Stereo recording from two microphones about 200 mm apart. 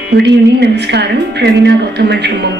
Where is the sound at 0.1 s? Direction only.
55° right (ahead or behind).